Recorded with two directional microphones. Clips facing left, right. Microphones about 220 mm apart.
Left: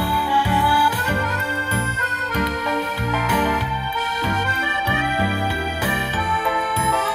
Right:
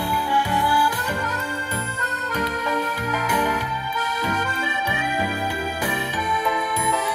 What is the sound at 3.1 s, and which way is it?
Music, 15° right (ahead or behind).